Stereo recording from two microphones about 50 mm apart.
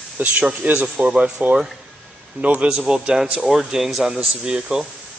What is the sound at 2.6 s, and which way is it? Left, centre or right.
Speech, centre.